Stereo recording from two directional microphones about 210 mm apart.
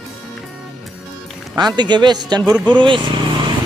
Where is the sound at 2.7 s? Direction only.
25° right (ahead or behind).